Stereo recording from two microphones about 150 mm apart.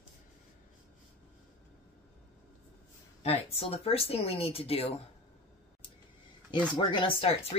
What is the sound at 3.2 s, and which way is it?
Speech, 40° left (ahead or behind).